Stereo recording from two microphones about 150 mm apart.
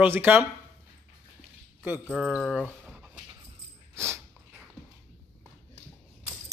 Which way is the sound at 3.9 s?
15° right (ahead or behind).